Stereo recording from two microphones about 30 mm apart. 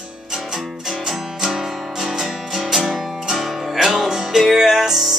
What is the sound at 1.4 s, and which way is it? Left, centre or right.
Music, centre.